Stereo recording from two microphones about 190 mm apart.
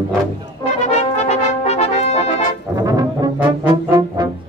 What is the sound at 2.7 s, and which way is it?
Brass instrument, 20° right (ahead or behind).